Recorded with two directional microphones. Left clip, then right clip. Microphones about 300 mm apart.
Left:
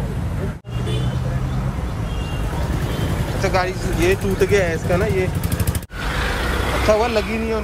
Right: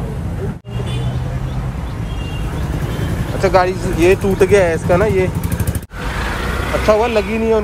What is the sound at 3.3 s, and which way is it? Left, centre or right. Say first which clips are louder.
Speech: right 7 dB; centre.